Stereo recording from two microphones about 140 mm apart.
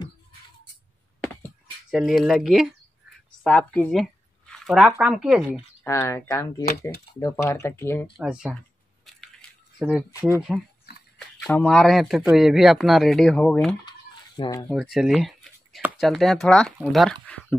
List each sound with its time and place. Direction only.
1.9 s speech: centre (ahead or behind)
3.4 s speech: 10° left (ahead or behind); by 5.5 s 5° right (ahead or behind)
5.5 s speech: 20° left (ahead or behind)
8.2 s speech: 5° right (ahead or behind)
9.8 s speech: 5° right (ahead or behind)
11.1 s speech: 5° left (ahead or behind)
13.8 s chicken: 30° left (ahead or behind)
14.7 s speech: centre (ahead or behind)